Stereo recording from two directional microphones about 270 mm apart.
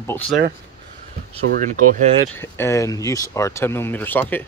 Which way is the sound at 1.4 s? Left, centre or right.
Right.